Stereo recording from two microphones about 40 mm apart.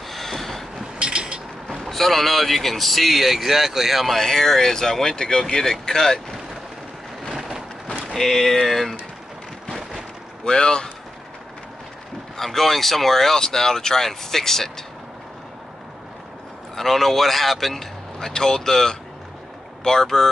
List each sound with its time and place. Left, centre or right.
0.1 s vehicle: centre
0.9 s a sound: right
1.7 s speech: centre
7.2 s a sound: centre
8.1 s speech: centre
10.4 s a man's voice: centre
12.4 s speech: centre
16.7 s speech: centre